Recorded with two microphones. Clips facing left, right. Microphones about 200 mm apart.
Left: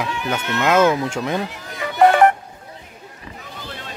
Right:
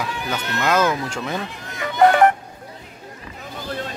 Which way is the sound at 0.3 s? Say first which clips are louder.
Left 3 dB; 20° left (ahead or behind).